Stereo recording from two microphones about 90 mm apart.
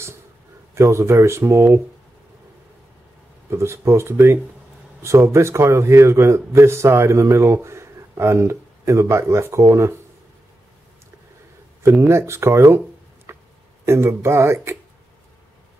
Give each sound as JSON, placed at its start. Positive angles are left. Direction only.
{"t": 0.7, "sound": "a man's voice", "side_deg": -30}
{"t": 3.4, "sound": "a man's voice", "side_deg": -30}
{"t": 11.8, "sound": "speech", "side_deg": -25}
{"t": 13.3, "sound": "a sound", "side_deg": -30}
{"t": 13.8, "sound": "speech", "side_deg": -30}